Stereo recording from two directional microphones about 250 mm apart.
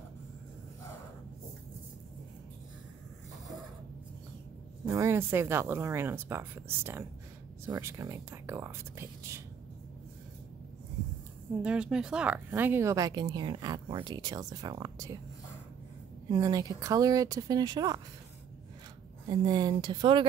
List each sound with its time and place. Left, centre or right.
4.8 s speech: centre
11.6 s speech: centre
16.3 s speech: centre
19.2 s speech: centre